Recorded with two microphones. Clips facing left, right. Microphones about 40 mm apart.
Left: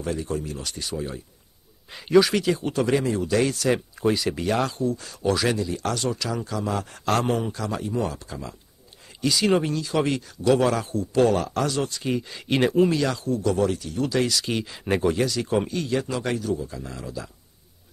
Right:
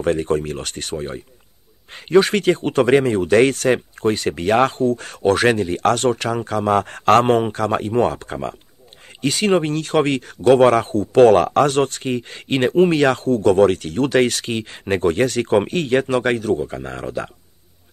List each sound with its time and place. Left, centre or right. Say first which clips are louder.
0.0 s speech: right 9 dB; right